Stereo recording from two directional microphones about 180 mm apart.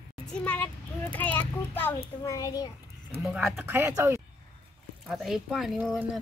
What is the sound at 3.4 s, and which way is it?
Speech, 15° right (ahead or behind).